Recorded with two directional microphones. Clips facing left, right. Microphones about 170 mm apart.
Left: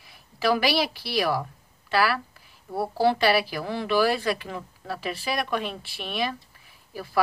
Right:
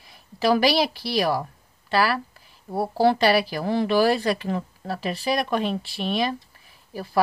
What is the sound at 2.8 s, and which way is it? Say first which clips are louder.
Speech: right 3 dB; 40° right (ahead or behind).